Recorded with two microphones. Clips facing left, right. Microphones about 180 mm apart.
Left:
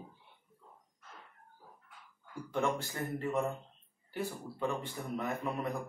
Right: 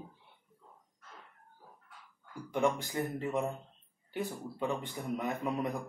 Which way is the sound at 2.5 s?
15° right (ahead or behind).